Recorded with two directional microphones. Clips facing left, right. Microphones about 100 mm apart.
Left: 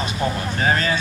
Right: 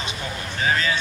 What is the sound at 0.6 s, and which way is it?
Speech, 45° left (ahead or behind).